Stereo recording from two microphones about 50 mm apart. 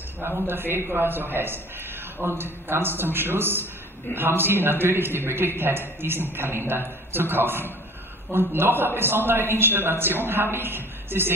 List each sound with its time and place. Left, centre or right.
0.2 s a man's voice: right